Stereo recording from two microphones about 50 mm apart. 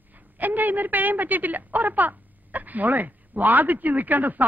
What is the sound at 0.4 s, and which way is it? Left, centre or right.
A woman's voice, right.